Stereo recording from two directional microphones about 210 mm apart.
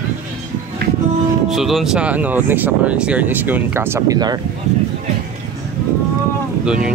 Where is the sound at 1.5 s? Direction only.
Centre (ahead or behind); by 4.4 s 20° right (ahead or behind).